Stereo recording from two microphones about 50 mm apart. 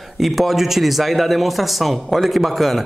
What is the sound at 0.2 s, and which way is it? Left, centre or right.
Speech, centre.